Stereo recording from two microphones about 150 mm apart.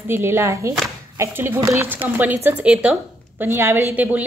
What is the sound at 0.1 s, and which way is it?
A woman's voice, 15° right (ahead or behind).